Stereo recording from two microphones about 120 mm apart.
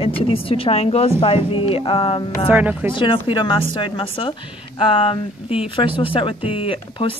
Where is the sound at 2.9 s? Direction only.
45° left (ahead or behind).